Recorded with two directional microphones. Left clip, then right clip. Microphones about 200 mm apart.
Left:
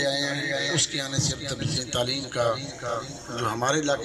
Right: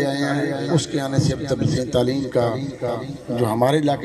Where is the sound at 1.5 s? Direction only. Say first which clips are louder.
Right 8 dB; 35° right (ahead or behind).